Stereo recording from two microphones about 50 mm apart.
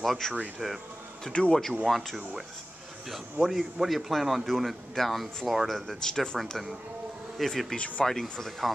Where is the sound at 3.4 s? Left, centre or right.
Centre.